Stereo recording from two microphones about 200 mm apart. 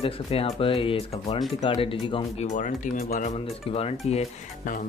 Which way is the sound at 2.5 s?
40° left (ahead or behind).